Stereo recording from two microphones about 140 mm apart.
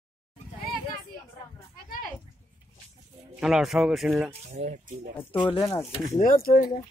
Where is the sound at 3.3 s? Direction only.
5° right (ahead or behind).